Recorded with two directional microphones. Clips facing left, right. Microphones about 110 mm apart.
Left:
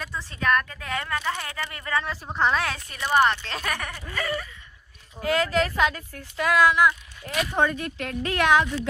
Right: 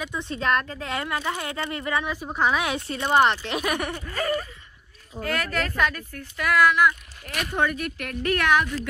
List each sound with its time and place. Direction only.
0.1 s speech: 25° right (ahead or behind)
2.9 s speech: 25° right (ahead or behind)
4.1 s a sound: 40° right (ahead or behind)
5.2 s speech: 20° left (ahead or behind)